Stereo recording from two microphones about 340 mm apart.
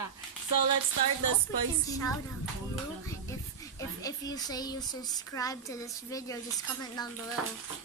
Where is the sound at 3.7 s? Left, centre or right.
Centre.